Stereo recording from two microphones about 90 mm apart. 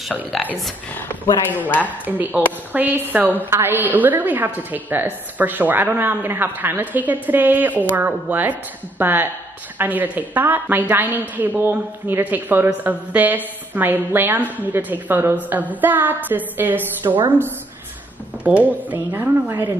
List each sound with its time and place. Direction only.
0.9 s speech: 20° left (ahead or behind)
1.9 s a woman's voice: 20° right (ahead or behind)